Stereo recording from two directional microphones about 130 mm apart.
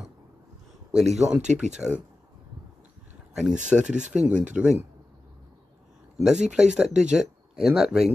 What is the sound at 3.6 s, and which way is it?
Speech, 5° right (ahead or behind).